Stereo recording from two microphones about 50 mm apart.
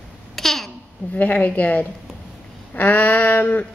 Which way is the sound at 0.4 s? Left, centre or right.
Centre.